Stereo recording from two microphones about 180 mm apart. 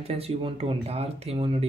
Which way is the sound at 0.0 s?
35° right (ahead or behind).